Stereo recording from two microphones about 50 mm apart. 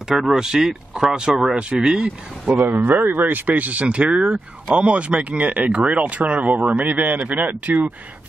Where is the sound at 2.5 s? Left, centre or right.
Right.